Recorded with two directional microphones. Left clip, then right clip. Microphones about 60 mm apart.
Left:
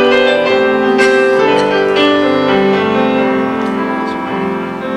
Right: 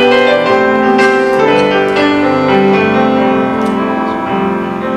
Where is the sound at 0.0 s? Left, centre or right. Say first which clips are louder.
Right 1 dB; centre.